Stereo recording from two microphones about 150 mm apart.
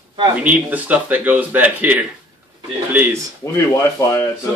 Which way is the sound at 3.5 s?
15° left (ahead or behind).